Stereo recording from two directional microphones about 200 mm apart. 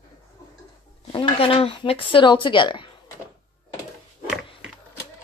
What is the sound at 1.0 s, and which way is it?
Speech, 25° left (ahead or behind).